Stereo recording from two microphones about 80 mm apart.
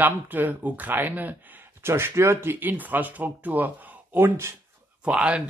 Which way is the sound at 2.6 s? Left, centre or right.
Right.